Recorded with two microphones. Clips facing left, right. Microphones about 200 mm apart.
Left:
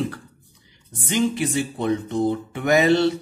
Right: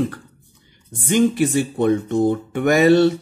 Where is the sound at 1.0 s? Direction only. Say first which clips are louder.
Right 5 dB; 50° right (ahead or behind).